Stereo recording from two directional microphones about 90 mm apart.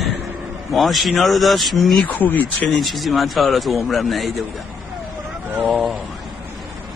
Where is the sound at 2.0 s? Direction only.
20° left (ahead or behind).